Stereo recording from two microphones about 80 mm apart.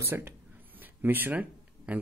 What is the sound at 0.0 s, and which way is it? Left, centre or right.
Speech, right.